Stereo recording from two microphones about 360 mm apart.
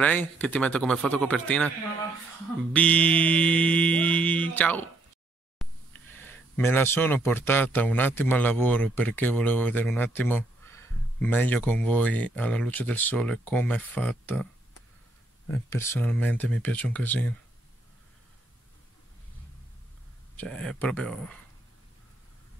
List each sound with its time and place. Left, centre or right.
0.0 s speech: centre
2.7 s speech: centre
20.3 s speech: centre